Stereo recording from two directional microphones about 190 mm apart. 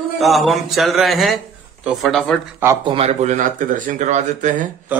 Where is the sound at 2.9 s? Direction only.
35° right (ahead or behind).